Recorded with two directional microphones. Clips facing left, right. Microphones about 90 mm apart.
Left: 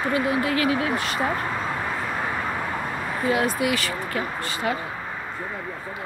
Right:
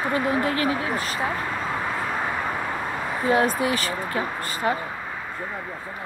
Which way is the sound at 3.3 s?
35° right (ahead or behind).